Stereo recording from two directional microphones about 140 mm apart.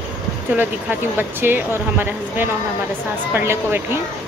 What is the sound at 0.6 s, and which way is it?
Speech, 15° right (ahead or behind).